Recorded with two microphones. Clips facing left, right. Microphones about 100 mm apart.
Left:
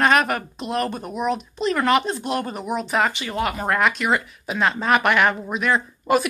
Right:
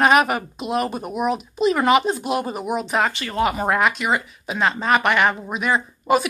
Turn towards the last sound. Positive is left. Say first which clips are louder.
# right 1 dB
turn(degrees=-5)  # may be behind; listen again after turning